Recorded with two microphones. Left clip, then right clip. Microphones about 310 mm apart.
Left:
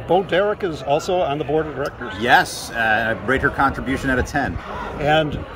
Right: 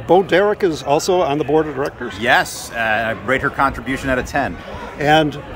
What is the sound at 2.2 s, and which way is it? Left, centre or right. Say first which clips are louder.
Speech: even; centre.